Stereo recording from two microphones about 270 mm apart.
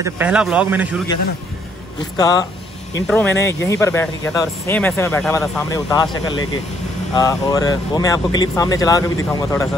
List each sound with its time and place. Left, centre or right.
0.0 s a man's voice: centre
2.1 s speech: centre